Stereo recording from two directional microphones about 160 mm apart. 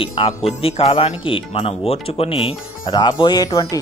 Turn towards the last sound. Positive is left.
turn(degrees=25)  # may be behind; listen again after turning